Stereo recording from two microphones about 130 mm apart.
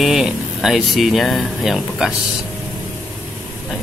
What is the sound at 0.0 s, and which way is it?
Speech, centre (ahead or behind).